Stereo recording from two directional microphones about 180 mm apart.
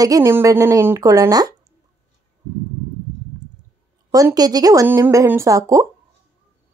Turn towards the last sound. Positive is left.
turn(degrees=-20)  # may be behind; listen again after turning